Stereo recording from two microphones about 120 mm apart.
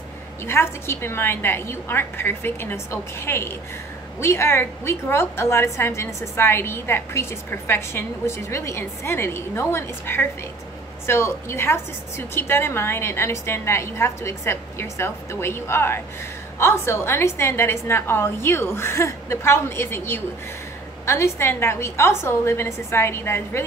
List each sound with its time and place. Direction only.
0.5 s a woman's voice: 20° left (ahead or behind)